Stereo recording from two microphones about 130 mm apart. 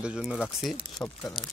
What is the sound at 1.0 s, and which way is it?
Speech, 15° left (ahead or behind).